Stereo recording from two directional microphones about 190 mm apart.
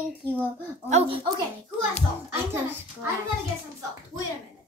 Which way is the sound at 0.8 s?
30° right (ahead or behind).